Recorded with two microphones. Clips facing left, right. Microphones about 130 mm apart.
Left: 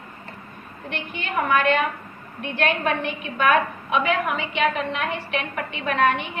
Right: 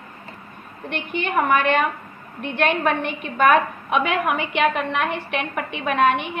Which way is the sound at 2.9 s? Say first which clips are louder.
Right 2 dB; 55° right (ahead or behind).